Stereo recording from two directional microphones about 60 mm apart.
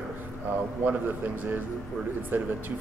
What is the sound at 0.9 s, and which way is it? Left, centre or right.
A man's voice, right.